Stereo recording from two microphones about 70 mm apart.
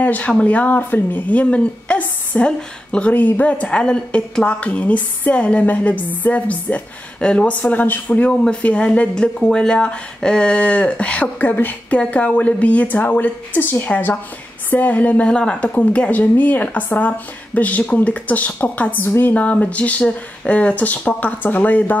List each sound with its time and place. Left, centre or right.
0.0 s speech: left